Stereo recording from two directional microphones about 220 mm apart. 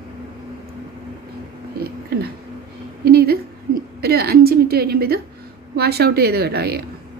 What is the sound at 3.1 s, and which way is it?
A woman's voice, 45° right (ahead or behind).